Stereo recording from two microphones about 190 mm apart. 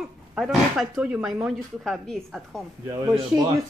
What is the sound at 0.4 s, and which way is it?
Speech, centre (ahead or behind).